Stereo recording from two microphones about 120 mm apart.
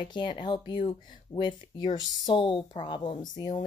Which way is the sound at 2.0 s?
40° left (ahead or behind).